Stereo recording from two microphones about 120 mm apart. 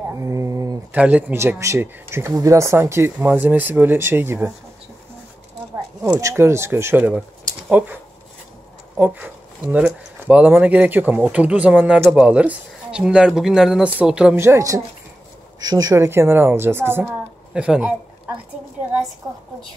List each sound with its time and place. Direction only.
0.1 s a sound: 25° right (ahead or behind)
0.9 s speech: 10° right (ahead or behind)
6.2 s speech: 20° right (ahead or behind)
8.9 s speech: 15° right (ahead or behind)
14.3 s speech: 20° right (ahead or behind)
17.6 s a man's voice: 10° right (ahead or behind)